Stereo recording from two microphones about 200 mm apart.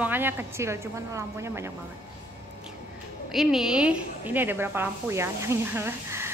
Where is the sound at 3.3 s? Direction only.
Centre (ahead or behind).